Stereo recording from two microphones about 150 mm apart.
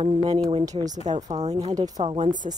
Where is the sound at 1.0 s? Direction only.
50° right (ahead or behind).